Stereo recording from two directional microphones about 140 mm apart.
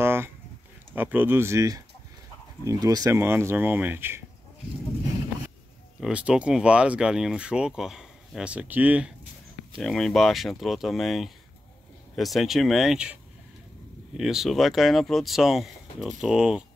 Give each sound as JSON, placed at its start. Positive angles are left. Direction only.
{"t": 0.0, "sound": "a sound", "side_deg": -15}
{"t": 0.9, "sound": "speech", "side_deg": -15}
{"t": 5.9, "sound": "speech", "side_deg": -5}
{"t": 9.8, "sound": "speech", "side_deg": 5}